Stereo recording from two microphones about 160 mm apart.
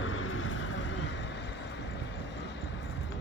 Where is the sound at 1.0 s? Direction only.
90° left.